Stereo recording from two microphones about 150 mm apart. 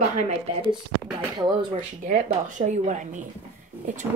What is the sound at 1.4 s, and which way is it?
Speech, 30° right (ahead or behind).